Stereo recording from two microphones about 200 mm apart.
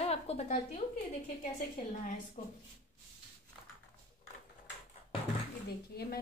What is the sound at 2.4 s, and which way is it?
Speech, 35° left (ahead or behind).